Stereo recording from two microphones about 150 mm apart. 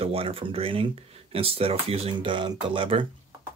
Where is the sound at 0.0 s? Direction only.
40° right (ahead or behind).